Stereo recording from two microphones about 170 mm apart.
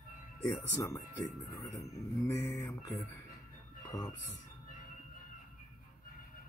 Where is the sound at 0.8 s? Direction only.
20° left (ahead or behind).